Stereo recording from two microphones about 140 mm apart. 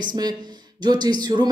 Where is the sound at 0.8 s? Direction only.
30° right (ahead or behind).